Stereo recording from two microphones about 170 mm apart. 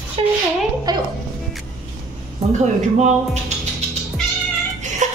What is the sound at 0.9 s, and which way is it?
Speech, 25° right (ahead or behind).